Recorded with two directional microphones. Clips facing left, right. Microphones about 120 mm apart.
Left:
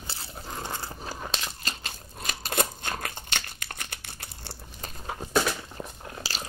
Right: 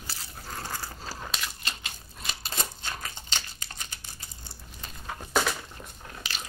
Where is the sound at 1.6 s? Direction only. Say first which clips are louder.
Left 2 dB; 40° left (ahead or behind); by 4.6 s 65° left (ahead or behind).